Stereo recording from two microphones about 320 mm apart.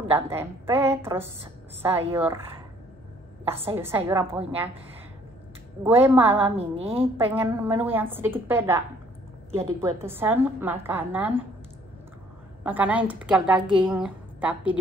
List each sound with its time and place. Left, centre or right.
0.1 s a woman's voice: centre
3.4 s a woman's voice: centre
5.9 s a woman's voice: centre
6.5 s a woman's voice: centre
7.2 s a woman's voice: centre
12.6 s a woman's voice: centre